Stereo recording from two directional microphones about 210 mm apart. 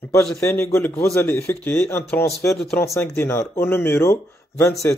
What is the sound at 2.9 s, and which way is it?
Speech, 10° left (ahead or behind).